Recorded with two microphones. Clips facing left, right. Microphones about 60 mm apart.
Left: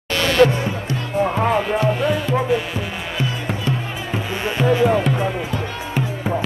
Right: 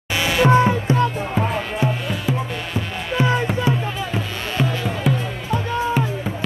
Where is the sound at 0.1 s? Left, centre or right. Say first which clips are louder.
Left 4 dB; centre.